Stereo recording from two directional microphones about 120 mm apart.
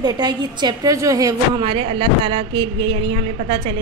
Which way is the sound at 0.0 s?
35° right (ahead or behind).